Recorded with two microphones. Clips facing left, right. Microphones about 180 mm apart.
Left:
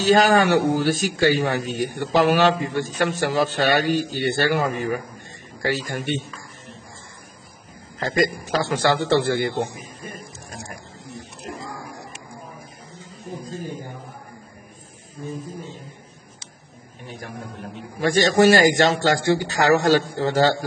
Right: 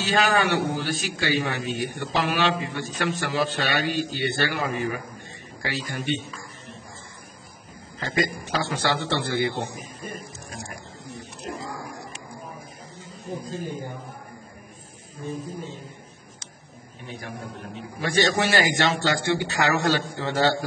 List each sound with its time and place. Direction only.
0.0 s a man's voice: 40° left (ahead or behind)
8.0 s a man's voice: 40° left (ahead or behind)
11.1 s a sound: centre (ahead or behind)
17.9 s speech: 45° left (ahead or behind)